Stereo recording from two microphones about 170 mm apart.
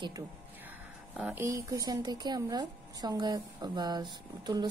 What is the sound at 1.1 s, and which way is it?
A woman's voice, 10° right (ahead or behind).